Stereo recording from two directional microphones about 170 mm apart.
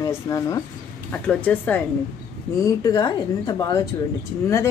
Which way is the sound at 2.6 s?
20° left (ahead or behind).